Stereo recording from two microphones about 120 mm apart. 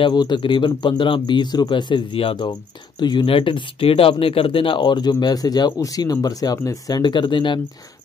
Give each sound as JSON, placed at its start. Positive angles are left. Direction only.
{"t": 0.0, "sound": "speech", "side_deg": 35}